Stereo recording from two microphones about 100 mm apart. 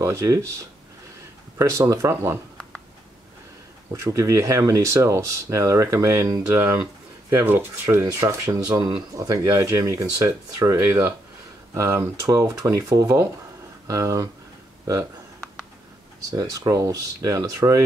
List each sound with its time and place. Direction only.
0.0 s speech: 30° right (ahead or behind)
3.9 s speech: 30° right (ahead or behind)
16.3 s speech: 40° right (ahead or behind)